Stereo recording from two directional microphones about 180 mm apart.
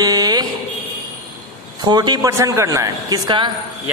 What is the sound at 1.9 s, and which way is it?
A man's voice, 20° right (ahead or behind).